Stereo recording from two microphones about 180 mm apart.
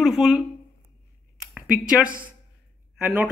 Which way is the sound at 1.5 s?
5° right (ahead or behind).